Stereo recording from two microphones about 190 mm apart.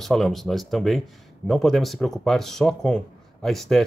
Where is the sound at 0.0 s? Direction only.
Centre (ahead or behind).